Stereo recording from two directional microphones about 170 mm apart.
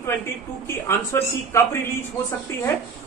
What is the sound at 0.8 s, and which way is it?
Speech, 15° left (ahead or behind).